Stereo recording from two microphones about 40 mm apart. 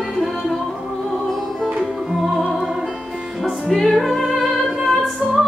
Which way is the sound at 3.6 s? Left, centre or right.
Centre.